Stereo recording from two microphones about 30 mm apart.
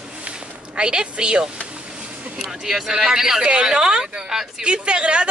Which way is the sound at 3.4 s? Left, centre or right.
Right.